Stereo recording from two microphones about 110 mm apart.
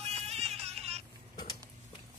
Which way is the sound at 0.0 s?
70° right (ahead or behind).